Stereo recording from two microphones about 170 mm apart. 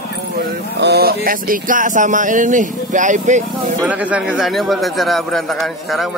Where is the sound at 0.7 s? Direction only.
80° right; by 3.7 s 45° right (ahead or behind).